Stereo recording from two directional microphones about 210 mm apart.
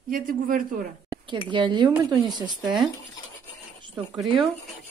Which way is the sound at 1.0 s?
20° right (ahead or behind).